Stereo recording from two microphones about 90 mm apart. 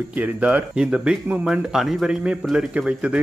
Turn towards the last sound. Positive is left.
turn(degrees=-10)  # may be behind; listen again after turning